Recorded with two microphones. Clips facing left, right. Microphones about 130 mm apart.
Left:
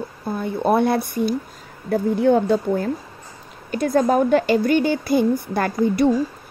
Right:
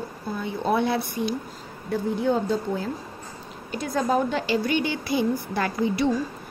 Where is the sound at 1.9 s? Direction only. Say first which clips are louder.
Left 7 dB; 60° left (ahead or behind).